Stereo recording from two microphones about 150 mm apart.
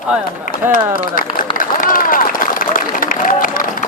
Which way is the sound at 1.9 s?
65° left (ahead or behind).